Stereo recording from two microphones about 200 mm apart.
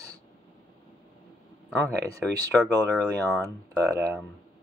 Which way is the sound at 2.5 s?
Centre (ahead or behind).